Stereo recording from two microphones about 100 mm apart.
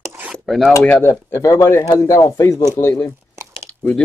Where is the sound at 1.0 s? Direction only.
25° left (ahead or behind).